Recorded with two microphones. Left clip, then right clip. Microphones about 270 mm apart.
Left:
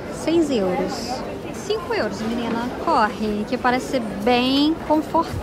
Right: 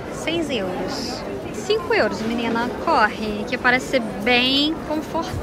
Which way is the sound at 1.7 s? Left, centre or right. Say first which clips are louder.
Right 4 dB; centre.